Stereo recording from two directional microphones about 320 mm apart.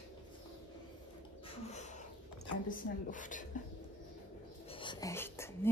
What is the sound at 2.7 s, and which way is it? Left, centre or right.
Speech, left.